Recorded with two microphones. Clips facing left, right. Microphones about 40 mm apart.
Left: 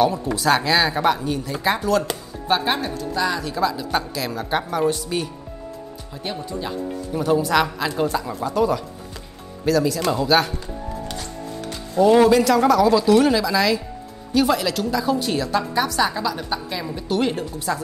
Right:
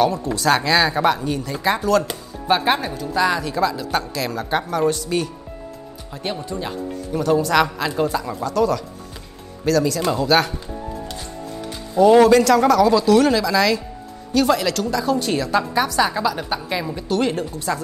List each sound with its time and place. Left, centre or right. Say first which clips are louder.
0.0 s a woman's voice: right 1 dB; centre
2.5 s speech: right 3 dB; centre
3.3 s a woman's voice: right 2 dB; centre
6.3 s speech: left 2 dB; centre
7.2 s a woman's voice: right 2 dB; centre
8.5 s a woman's voice: right 1 dB; centre
11.7 s music: right 3 dB; centre
12.2 s a woman's voice: right 2 dB; centre
16.1 s a woman's voice: right 3 dB; right
17.1 s a woman's voice: right 1 dB; centre